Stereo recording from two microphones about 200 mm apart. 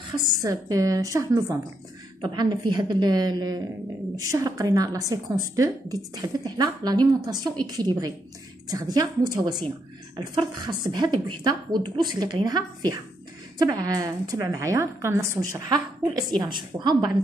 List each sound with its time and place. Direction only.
0.4 s a woman's voice: 15° right (ahead or behind)